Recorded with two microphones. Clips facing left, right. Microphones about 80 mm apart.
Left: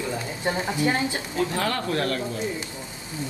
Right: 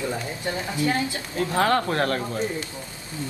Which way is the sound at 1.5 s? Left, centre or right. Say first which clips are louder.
Right 4 dB; right.